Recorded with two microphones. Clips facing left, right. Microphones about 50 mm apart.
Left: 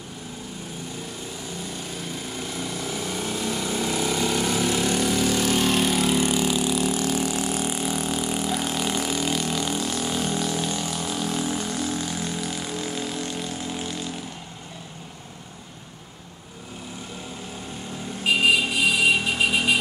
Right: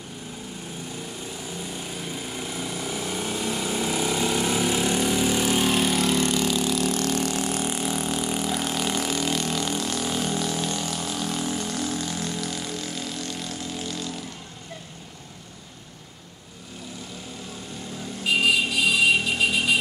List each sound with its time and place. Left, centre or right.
1.6 s vehicle: centre
18.2 s vehicle: left